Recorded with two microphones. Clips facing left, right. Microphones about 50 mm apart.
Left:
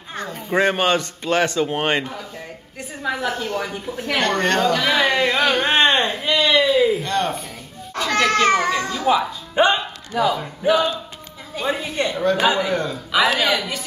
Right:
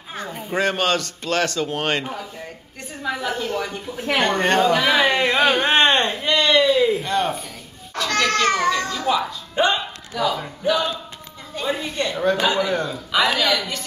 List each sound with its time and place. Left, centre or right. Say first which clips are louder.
0.1 s a sound: left 1 dB; centre
0.5 s a woman's voice: left 3 dB; centre
4.0 s speech: right 1 dB; centre
8.1 s speech: left 3 dB; centre
9.8 s a sound: left 3 dB; centre
10.6 s speech: left 3 dB; centre
12.7 s a woman's voice: left 1 dB; centre